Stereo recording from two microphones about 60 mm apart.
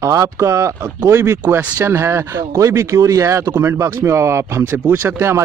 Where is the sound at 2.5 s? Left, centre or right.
Right.